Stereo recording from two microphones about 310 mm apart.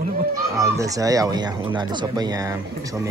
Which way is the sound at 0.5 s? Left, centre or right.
Centre.